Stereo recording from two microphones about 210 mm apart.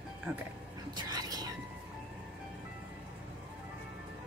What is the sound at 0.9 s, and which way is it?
Whispering, 20° right (ahead or behind).